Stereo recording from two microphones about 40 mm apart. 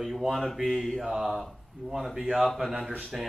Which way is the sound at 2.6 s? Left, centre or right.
Centre.